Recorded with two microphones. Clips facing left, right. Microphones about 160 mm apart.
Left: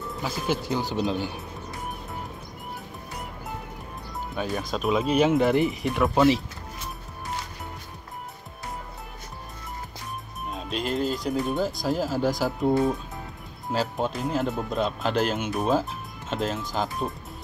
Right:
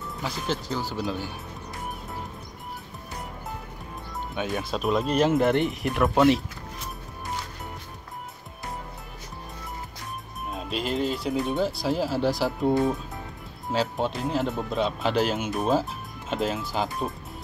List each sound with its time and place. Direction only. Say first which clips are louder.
0.2 s speech: left 2 dB; 10° left (ahead or behind)
4.4 s speech: even; centre (ahead or behind)
10.5 s speech: even; centre (ahead or behind)